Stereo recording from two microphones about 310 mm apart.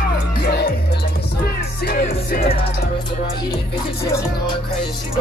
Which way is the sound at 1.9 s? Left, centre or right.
Left.